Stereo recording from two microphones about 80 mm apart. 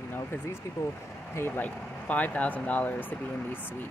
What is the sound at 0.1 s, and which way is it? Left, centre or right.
Speech, left.